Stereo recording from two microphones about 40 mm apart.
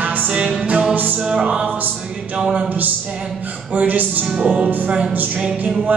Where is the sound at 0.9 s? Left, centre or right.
Right.